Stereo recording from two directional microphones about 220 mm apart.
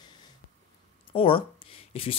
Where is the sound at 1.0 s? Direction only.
25° left (ahead or behind).